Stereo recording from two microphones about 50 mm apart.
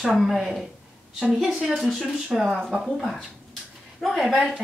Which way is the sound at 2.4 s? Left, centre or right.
Centre.